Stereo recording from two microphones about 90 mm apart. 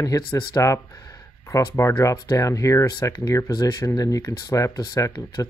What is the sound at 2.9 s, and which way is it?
Speech, 50° left (ahead or behind).